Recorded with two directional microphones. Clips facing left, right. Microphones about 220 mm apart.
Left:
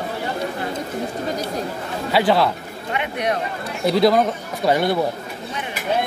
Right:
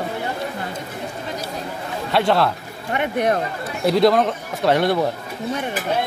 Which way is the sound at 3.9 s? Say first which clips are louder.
Even; centre (ahead or behind).